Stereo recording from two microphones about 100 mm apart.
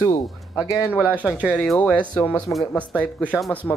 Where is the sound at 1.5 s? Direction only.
10° left (ahead or behind).